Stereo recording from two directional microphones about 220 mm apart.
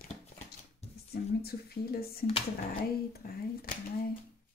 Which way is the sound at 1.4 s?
45° left (ahead or behind).